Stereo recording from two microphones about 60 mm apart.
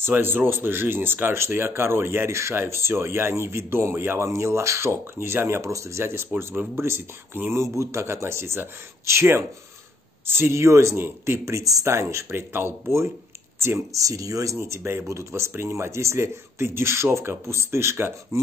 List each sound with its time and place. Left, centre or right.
0.0 s speech: right
3.9 s speech: right
4.2 s speech: right
6.5 s speech: right
6.8 s speech: right
11.9 s speech: right
13.9 s speech: right
14.8 s speech: right
15.0 s speech: right